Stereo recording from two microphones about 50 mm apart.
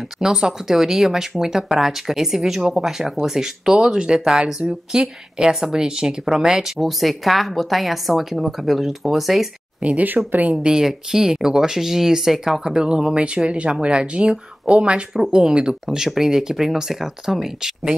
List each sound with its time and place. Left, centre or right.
0.2 s speech: centre
6.8 s speech: centre
9.8 s speech: right
10.5 s speech: centre